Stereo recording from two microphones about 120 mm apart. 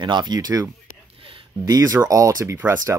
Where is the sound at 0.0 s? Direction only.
40° right (ahead or behind).